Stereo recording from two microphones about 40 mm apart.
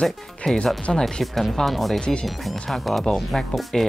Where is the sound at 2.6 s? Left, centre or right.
Centre.